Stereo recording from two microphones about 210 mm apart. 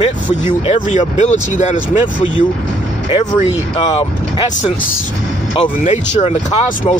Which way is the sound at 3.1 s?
30° left (ahead or behind).